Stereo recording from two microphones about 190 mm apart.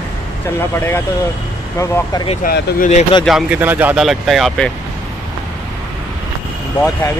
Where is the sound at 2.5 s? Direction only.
45° left (ahead or behind).